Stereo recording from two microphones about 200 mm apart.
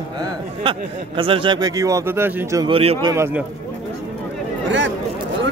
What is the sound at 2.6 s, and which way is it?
Speech, 30° right (ahead or behind).